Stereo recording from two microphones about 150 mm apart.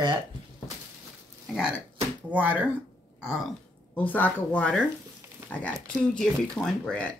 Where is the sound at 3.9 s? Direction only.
10° left (ahead or behind).